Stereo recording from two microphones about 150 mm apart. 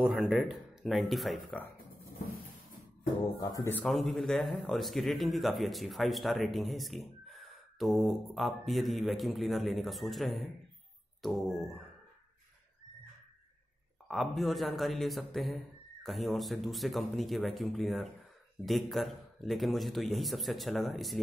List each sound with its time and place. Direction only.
0.0 s speech: centre (ahead or behind)
3.4 s speech: 25° left (ahead or behind)
3.8 s speech: centre (ahead or behind)
14.0 s speech: centre (ahead or behind)